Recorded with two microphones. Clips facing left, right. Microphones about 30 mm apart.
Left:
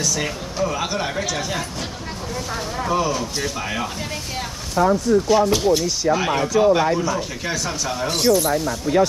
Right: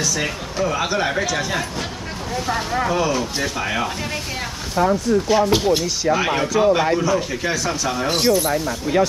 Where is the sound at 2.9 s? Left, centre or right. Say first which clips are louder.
Right 1 dB; centre.